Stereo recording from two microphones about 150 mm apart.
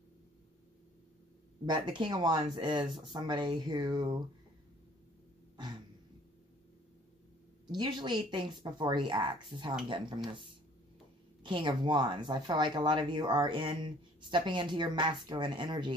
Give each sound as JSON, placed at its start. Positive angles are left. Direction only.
{"t": 1.7, "sound": "speech", "side_deg": -30}
{"t": 7.7, "sound": "speech", "side_deg": -30}
{"t": 11.4, "sound": "speech", "side_deg": -30}